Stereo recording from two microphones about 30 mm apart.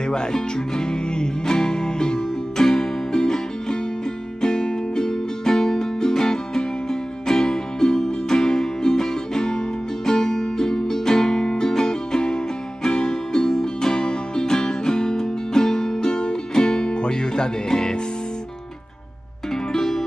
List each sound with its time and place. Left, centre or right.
0.0 s music: left
19.5 s music: centre